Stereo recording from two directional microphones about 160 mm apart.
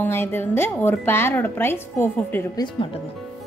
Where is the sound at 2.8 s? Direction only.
30° left (ahead or behind).